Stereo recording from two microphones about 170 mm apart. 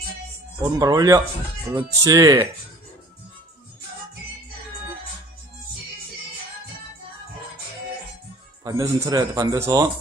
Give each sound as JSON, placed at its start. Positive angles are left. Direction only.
{"t": 0.6, "sound": "a man's voice", "side_deg": -20}
{"t": 8.6, "sound": "a man's voice", "side_deg": -20}